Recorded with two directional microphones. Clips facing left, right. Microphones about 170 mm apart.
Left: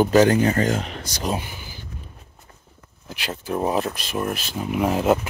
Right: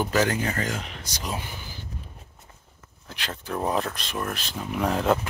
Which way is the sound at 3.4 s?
15° left (ahead or behind).